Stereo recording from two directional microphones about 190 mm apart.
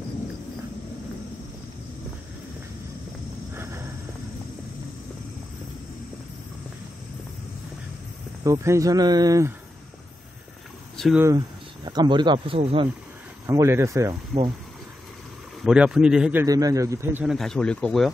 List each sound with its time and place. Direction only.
8.5 s speech: 15° right (ahead or behind)
11.1 s speech: 20° right (ahead or behind)
13.5 s speech: 15° right (ahead or behind)
15.6 s a man's voice: 5° right (ahead or behind)